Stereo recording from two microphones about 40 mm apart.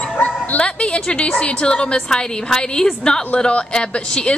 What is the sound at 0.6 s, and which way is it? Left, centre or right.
A woman's voice, left.